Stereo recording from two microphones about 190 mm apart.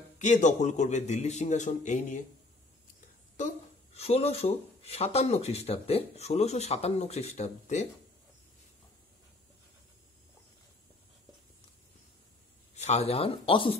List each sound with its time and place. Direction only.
0.2 s speech: 40° left (ahead or behind)
3.9 s speech: 35° left (ahead or behind)
12.7 s speech: 35° left (ahead or behind)